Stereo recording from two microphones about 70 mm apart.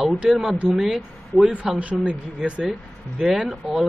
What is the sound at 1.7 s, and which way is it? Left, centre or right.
Speech, centre.